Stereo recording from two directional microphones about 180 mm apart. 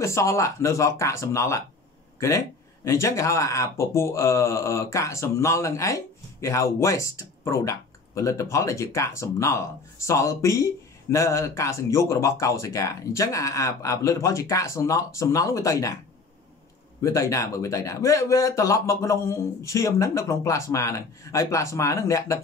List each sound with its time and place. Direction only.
0.0 s speech: 15° left (ahead or behind)
17.0 s speech: 15° left (ahead or behind)